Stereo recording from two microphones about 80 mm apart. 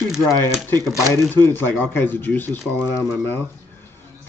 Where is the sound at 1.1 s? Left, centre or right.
Left.